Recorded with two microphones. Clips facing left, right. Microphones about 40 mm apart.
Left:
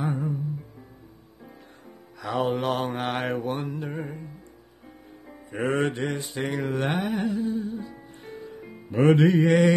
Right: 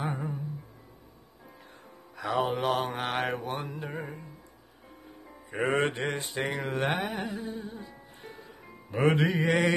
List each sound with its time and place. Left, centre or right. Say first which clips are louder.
0.0 s music: left 5 dB; centre
2.2 s mantra: left 2 dB; centre
5.5 s music: left 2 dB; centre
5.9 s mantra: left 3 dB; right
6.2 s music: left 3 dB; centre
8.9 s mantra: left 6 dB; centre